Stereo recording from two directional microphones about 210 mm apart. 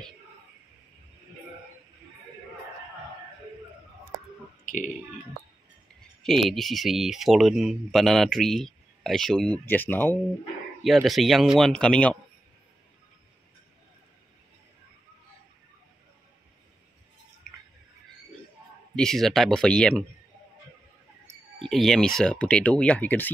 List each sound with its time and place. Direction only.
4.6 s speech: 40° left (ahead or behind)
6.2 s speech: centre (ahead or behind)
18.9 s speech: centre (ahead or behind)
21.3 s speech: centre (ahead or behind)